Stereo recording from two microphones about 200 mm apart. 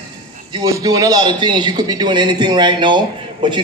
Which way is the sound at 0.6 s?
20° right (ahead or behind).